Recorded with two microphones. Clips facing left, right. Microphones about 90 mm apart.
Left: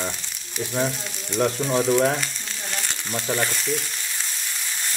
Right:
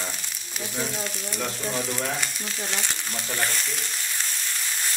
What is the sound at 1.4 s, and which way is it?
Frying, 35° left (ahead or behind).